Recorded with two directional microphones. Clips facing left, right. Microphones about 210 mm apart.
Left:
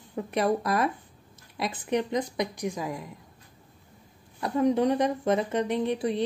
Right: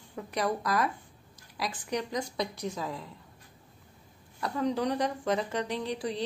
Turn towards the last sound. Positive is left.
turn(degrees=20)  # may be behind; listen again after turning